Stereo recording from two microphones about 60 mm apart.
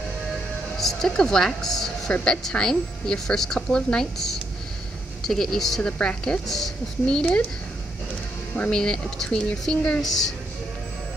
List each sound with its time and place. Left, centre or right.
0.7 s speech: centre
2.1 s a woman's voice: left
2.4 s speech: centre
8.6 s speech: centre